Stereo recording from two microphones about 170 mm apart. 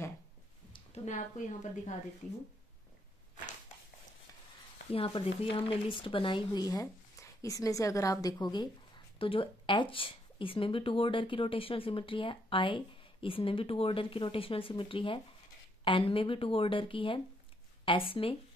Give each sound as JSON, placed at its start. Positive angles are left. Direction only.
{"t": 0.7, "sound": "a woman's voice", "side_deg": 40}
{"t": 4.9, "sound": "speech", "side_deg": 35}